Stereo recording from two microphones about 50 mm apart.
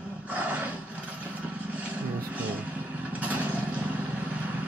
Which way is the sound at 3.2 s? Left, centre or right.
Right.